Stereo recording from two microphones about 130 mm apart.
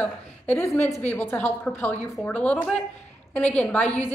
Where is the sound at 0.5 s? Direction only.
20° left (ahead or behind).